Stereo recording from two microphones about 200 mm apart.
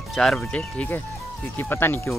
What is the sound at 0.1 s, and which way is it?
Speech, 5° left (ahead or behind).